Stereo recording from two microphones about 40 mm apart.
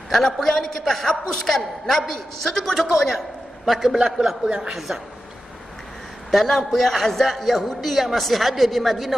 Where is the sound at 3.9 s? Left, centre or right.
Right.